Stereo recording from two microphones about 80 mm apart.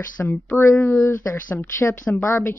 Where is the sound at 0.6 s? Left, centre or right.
Left.